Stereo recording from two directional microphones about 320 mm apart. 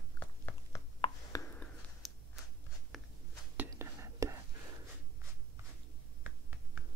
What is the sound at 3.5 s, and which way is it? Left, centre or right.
Whispering, centre.